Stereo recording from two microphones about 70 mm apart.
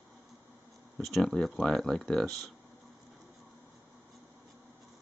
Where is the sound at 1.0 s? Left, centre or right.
Centre.